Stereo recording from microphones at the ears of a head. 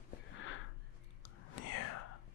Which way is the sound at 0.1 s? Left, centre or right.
Left.